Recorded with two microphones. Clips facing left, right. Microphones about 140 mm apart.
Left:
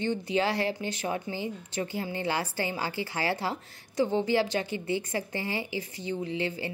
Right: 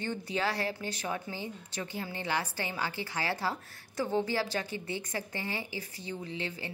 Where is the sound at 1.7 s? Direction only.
30° left (ahead or behind).